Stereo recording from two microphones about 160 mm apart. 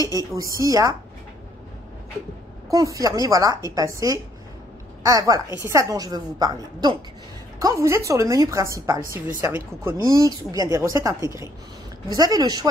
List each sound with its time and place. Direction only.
0.0 s speech: 20° right (ahead or behind)
2.7 s speech: 20° right (ahead or behind)
5.0 s a woman's voice: 20° right (ahead or behind)